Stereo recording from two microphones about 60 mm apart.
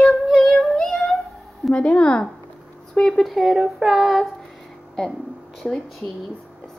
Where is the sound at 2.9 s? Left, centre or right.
Centre.